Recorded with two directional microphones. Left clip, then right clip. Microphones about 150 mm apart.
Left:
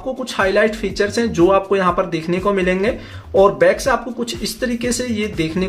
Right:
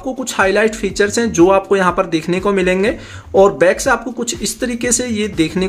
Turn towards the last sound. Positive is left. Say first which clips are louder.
# right 4 dB
turn(degrees=-30)  # may be behind; listen again after turning